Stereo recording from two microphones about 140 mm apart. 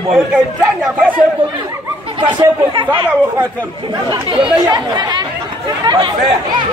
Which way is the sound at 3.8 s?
35° right (ahead or behind).